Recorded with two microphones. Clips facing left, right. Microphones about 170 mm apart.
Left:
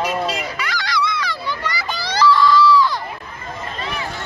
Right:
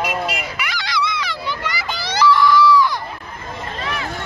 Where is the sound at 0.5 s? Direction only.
20° right (ahead or behind).